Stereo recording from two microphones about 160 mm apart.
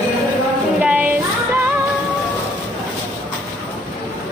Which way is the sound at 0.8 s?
10° right (ahead or behind).